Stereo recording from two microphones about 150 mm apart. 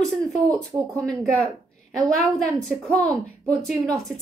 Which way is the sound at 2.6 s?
5° left (ahead or behind).